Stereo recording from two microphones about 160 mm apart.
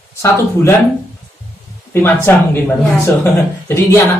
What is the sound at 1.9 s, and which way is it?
Speech, 15° left (ahead or behind).